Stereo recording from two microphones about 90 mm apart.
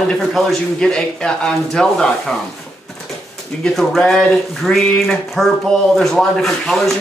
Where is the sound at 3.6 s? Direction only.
5° left (ahead or behind).